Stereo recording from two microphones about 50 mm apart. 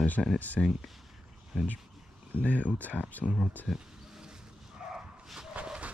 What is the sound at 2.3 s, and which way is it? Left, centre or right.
Speech, left.